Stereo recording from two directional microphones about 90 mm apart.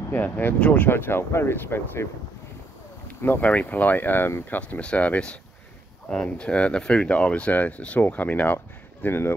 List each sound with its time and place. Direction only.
0.1 s speech: 20° left (ahead or behind)
3.2 s speech: 20° left (ahead or behind)
4.6 s speech: 15° left (ahead or behind)